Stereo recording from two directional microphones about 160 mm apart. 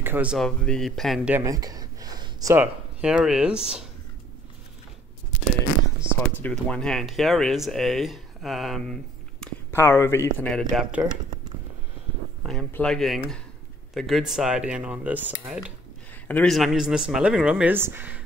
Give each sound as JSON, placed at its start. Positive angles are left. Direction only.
{"t": 0.0, "sound": "speech", "side_deg": -10}
{"t": 0.4, "sound": "speech", "side_deg": 5}
{"t": 1.3, "sound": "a sound", "side_deg": -20}
{"t": 2.5, "sound": "speech", "side_deg": -10}
{"t": 6.3, "sound": "speech", "side_deg": 10}
{"t": 9.4, "sound": "speech", "side_deg": 15}
{"t": 12.4, "sound": "speech", "side_deg": 5}
{"t": 16.3, "sound": "speech", "side_deg": 10}
{"t": 16.5, "sound": "speech", "side_deg": 0}